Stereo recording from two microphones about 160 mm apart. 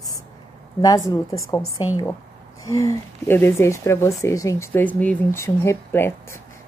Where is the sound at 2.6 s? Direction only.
20° left (ahead or behind).